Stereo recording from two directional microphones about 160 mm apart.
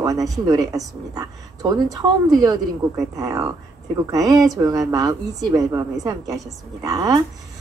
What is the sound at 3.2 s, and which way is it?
A woman's voice, 20° right (ahead or behind).